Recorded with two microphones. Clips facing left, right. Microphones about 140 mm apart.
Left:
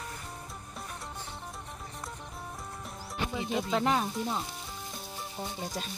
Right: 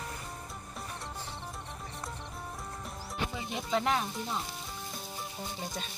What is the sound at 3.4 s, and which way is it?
Speech, centre (ahead or behind).